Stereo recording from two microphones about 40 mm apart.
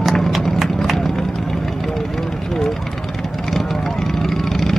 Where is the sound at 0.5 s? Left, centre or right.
Centre.